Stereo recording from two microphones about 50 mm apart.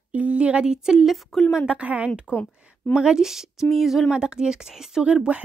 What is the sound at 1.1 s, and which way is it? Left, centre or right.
Speech, centre.